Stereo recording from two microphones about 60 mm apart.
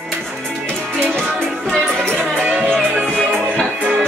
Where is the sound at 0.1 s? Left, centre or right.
Centre.